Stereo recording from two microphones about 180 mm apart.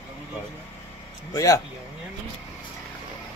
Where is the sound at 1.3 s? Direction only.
20° left (ahead or behind).